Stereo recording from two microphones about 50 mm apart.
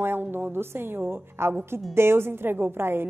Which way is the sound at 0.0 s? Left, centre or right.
Right.